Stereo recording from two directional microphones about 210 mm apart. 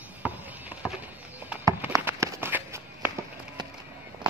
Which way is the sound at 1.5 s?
10° right (ahead or behind).